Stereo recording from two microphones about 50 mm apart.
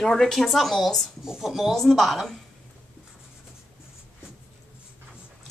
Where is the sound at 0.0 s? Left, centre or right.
Centre.